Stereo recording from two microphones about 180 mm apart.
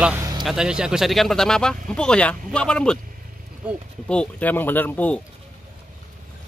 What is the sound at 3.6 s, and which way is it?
Speech, 5° right (ahead or behind).